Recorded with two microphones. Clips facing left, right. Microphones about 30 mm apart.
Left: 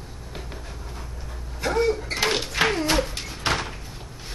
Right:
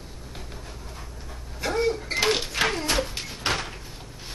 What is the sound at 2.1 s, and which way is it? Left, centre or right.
Door, centre.